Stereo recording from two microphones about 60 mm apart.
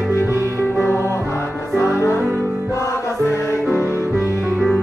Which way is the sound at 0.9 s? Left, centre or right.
Left.